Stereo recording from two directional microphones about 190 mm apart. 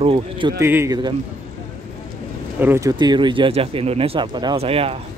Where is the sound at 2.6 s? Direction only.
15° right (ahead or behind).